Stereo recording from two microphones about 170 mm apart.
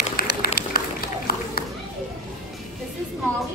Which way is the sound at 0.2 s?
60° left (ahead or behind).